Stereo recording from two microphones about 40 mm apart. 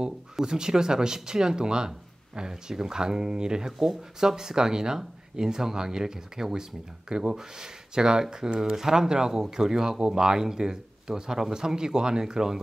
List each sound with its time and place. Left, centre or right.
0.0 s speech: centre